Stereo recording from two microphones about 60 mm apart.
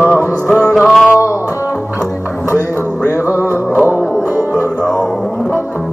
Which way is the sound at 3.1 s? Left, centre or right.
Right.